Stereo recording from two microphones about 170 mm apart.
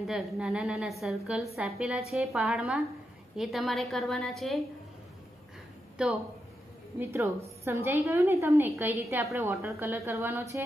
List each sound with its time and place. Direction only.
0.0 s a woman's voice: 5° right (ahead or behind)
6.0 s a woman's voice: 5° right (ahead or behind)
7.0 s a woman's voice: 15° right (ahead or behind)